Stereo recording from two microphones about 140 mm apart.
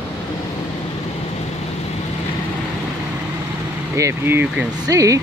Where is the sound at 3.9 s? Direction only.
20° right (ahead or behind).